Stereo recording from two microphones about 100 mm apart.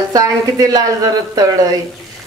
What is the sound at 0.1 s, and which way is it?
A woman's voice, 35° right (ahead or behind).